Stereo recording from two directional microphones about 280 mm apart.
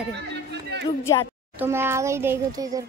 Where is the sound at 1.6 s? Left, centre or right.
Centre.